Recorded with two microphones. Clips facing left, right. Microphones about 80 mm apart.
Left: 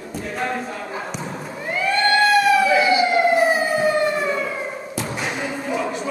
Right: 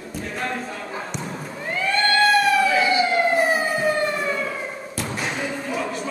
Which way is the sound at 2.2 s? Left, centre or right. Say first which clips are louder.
Left 1 dB; centre.